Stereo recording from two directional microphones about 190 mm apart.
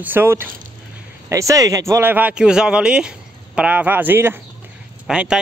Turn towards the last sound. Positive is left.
turn(degrees=-5)  # may be behind; listen again after turning